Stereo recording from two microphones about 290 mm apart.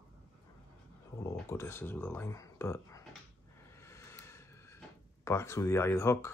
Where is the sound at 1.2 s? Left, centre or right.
Centre.